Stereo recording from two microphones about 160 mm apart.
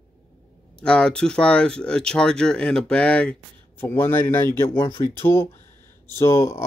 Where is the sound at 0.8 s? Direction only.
5° left (ahead or behind).